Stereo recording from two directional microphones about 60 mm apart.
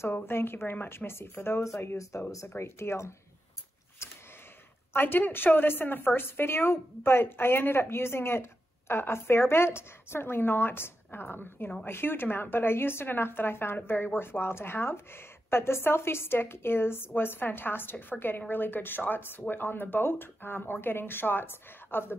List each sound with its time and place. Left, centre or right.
0.0 s a woman's voice: left
4.0 s a sound: left
4.9 s a woman's voice: left